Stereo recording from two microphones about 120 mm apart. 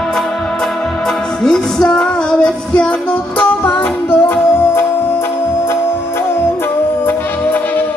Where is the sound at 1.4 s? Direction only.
5° left (ahead or behind).